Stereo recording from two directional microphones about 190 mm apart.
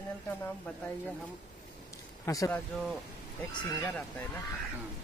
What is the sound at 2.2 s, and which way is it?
Speech, 15° left (ahead or behind).